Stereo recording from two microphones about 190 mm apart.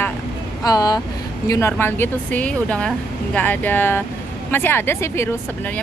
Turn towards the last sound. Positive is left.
turn(degrees=15)  # may be behind; listen again after turning